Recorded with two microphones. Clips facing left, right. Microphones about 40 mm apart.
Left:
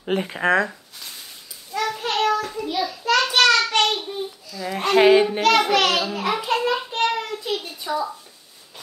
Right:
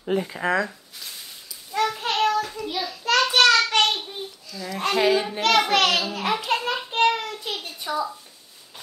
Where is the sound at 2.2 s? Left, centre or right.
Left.